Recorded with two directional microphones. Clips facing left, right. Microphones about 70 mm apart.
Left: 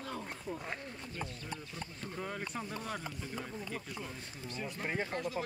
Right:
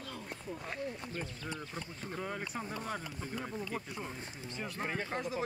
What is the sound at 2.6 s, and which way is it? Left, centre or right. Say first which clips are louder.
Speech: right 1 dB; right.